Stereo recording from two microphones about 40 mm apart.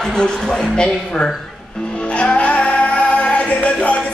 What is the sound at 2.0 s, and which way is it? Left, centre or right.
Music, left.